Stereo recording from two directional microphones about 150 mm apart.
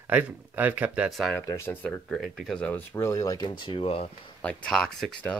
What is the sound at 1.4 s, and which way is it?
Speech, 20° left (ahead or behind).